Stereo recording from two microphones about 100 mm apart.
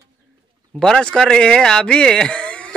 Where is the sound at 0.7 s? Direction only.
5° left (ahead or behind).